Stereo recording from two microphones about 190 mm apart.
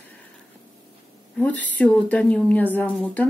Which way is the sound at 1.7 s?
5° left (ahead or behind).